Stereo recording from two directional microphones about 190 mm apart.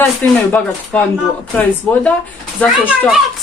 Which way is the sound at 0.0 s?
10° left (ahead or behind).